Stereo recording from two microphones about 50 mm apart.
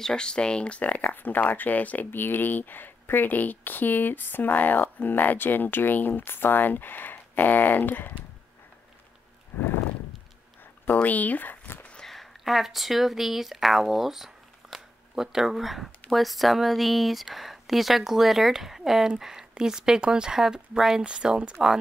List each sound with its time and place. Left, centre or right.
0.0 s speech: centre; by 2.0 s left
2.0 s speech: left
9.5 s horse: left
11.0 s speech: left
12.0 s speech: centre